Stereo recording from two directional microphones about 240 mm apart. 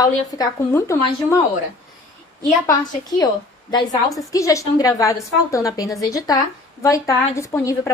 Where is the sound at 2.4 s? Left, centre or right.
Centre.